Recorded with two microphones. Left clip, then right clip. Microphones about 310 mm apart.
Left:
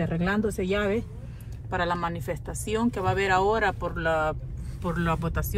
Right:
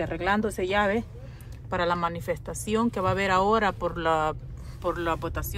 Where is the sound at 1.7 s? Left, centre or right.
Centre.